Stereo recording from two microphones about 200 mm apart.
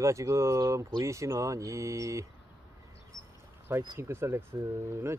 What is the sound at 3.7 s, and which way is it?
Speech, 15° right (ahead or behind).